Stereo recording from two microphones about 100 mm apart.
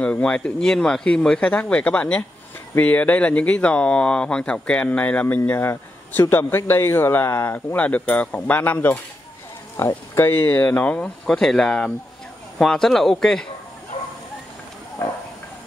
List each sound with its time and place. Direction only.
0.0 s speech: 10° left (ahead or behind)